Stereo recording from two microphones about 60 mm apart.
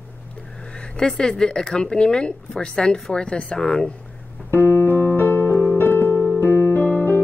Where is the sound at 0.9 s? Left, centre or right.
Centre.